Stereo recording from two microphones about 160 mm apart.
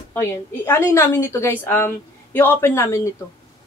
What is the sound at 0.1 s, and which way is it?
A woman's voice, 15° left (ahead or behind).